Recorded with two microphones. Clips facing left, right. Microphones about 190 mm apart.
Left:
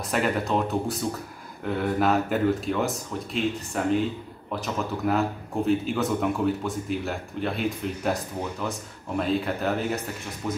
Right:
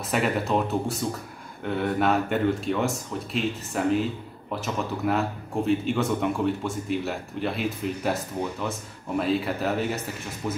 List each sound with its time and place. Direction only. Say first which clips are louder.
0.1 s speech: right 1 dB; centre (ahead or behind)